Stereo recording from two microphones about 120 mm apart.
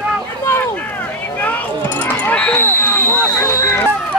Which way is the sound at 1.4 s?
15° left (ahead or behind).